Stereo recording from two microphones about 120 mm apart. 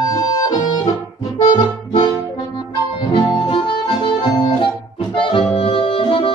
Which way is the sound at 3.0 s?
40° left (ahead or behind).